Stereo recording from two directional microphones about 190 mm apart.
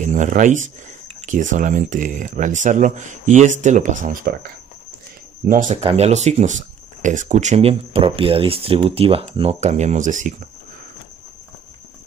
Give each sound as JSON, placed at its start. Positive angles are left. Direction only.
{"t": 0.0, "sound": "speech", "side_deg": -40}
{"t": 5.5, "sound": "speech", "side_deg": -40}